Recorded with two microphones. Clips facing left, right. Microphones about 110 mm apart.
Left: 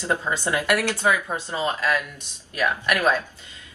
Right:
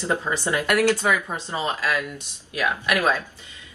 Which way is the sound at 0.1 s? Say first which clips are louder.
Even; 15° left (ahead or behind).